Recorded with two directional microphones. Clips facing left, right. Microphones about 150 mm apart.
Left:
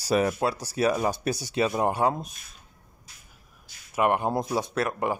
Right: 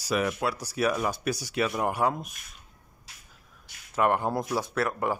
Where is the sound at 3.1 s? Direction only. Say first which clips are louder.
Right 3 dB; 85° right.